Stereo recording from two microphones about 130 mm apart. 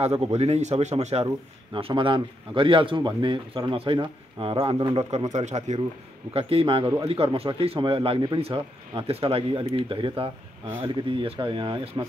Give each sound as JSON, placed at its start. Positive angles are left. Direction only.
{"t": 0.0, "sound": "speech", "side_deg": -50}
{"t": 1.8, "sound": "speech", "side_deg": -45}
{"t": 5.3, "sound": "speech", "side_deg": -65}
{"t": 6.3, "sound": "speech", "side_deg": -45}